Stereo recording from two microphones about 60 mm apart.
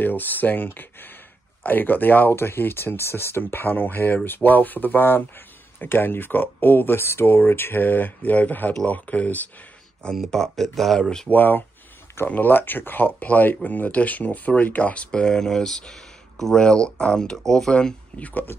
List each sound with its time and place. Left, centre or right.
0.0 s speech: left
10.3 s speech: centre
11.2 s speech: left; by 17.9 s centre
18.1 s speech: left